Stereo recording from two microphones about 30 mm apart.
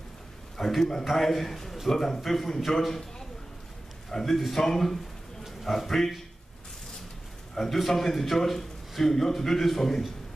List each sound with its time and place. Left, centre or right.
0.6 s a man's voice: centre
4.1 s a man's voice: centre
7.5 s a man's voice: centre